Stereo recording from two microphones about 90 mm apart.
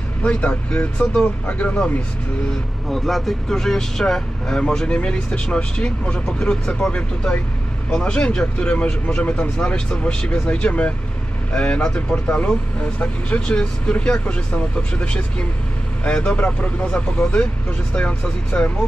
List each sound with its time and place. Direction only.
0.2 s speech: 15° left (ahead or behind)
2.9 s speech: centre (ahead or behind)